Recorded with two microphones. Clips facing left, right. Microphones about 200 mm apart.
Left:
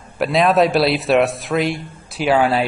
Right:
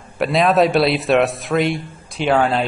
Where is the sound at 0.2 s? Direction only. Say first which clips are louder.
Even; centre (ahead or behind).